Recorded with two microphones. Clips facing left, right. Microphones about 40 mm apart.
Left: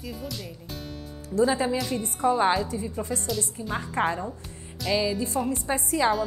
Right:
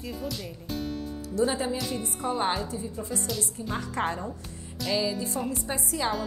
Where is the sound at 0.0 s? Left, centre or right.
Centre.